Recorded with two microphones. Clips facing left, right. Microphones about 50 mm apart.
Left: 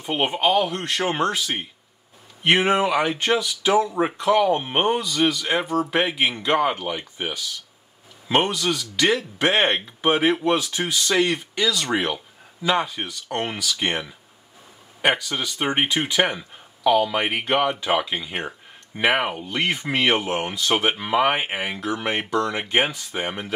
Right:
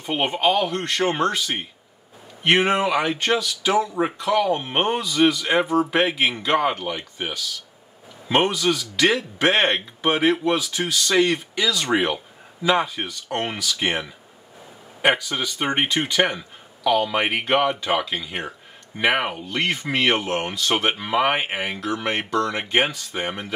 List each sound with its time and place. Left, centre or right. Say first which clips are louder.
0.0 s speech: even; centre
8.3 s speech: right 1 dB; centre
9.6 s speech: even; centre
11.1 s speech: right 2 dB; centre
21.0 s speech: even; centre
22.6 s speech: right 1 dB; centre